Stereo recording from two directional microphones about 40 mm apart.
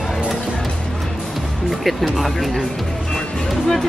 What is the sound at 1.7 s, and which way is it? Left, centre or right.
Music, centre.